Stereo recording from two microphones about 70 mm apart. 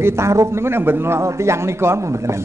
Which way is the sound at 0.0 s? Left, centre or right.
Right.